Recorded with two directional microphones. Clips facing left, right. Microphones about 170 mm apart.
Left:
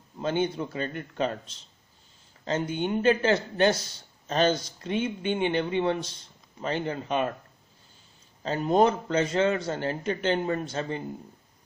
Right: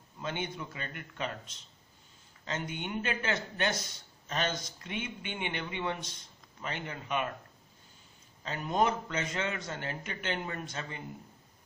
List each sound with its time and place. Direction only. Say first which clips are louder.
0.2 s a man's voice: left 10 dB; 35° left (ahead or behind)
8.4 s a man's voice: left 8 dB; 35° left (ahead or behind)